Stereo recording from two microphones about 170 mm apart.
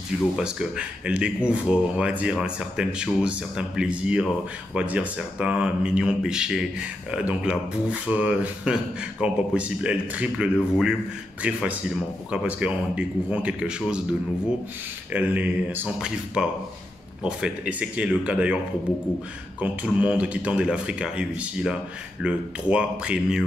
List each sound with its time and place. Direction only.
0.4 s speech: 5° right (ahead or behind)
15.1 s speech: 10° right (ahead or behind)
19.6 s speech: 5° right (ahead or behind)